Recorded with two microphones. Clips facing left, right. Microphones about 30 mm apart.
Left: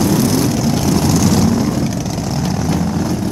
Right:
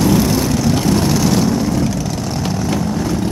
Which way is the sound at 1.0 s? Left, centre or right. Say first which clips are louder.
Left 1 dB; right.